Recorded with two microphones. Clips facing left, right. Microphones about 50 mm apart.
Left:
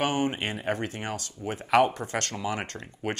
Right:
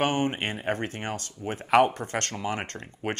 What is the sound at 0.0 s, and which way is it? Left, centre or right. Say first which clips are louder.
Speech: right 1 dB; right.